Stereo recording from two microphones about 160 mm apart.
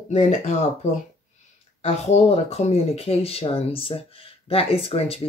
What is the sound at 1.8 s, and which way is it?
Speech, 45° left (ahead or behind).